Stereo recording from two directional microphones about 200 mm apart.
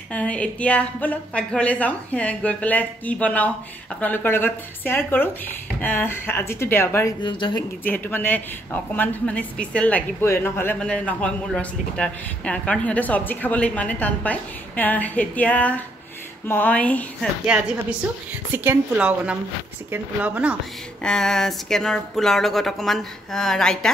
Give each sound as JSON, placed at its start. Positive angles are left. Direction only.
{"t": 0.1, "sound": "a woman's voice", "side_deg": 5}
{"t": 7.2, "sound": "speech", "side_deg": 25}
{"t": 7.8, "sound": "a woman's voice", "side_deg": 10}
{"t": 17.5, "sound": "speech", "side_deg": -5}
{"t": 21.0, "sound": "speech", "side_deg": 5}